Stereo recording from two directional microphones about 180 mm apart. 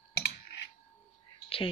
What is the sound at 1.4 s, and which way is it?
Whispering, 30° left (ahead or behind).